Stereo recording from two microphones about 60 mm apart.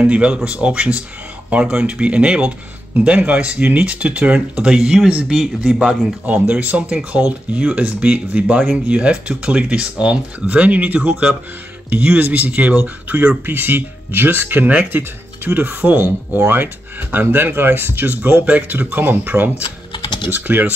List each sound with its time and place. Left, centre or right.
0.0 s a man's voice: centre
6.2 s speech: right
7.5 s speech: right